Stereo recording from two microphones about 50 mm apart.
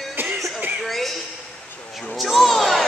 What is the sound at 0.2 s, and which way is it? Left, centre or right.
Music, right.